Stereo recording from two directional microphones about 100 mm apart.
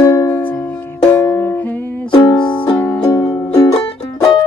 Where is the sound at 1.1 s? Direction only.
20° left (ahead or behind).